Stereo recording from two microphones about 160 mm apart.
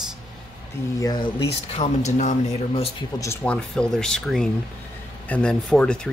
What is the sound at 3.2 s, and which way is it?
Speech, 15° left (ahead or behind).